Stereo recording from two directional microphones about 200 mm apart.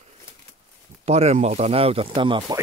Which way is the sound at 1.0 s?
30° right (ahead or behind).